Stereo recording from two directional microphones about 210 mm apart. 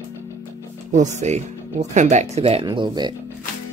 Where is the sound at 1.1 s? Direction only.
35° right (ahead or behind).